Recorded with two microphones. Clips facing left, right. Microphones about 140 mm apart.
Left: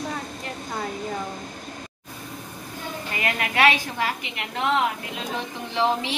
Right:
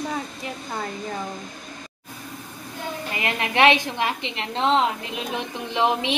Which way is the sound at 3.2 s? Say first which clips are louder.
Right 2 dB; 25° right (ahead or behind).